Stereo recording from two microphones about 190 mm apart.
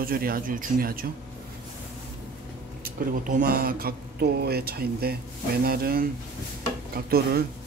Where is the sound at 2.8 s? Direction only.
50° right (ahead or behind).